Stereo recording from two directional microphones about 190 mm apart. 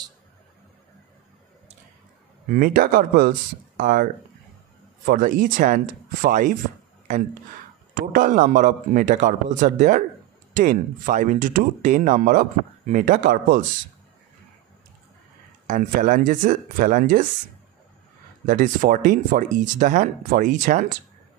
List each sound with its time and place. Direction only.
2.4 s speech: 50° right (ahead or behind)
7.9 s a man's voice: 45° right (ahead or behind)
15.6 s speech: 45° right (ahead or behind)
18.4 s speech: 45° right (ahead or behind)